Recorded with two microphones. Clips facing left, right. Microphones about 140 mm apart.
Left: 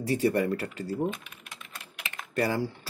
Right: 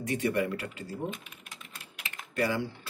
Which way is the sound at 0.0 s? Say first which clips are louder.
Left 4 dB; 35° left (ahead or behind).